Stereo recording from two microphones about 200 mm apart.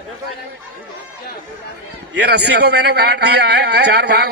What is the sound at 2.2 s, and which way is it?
A man's voice, 55° right (ahead or behind).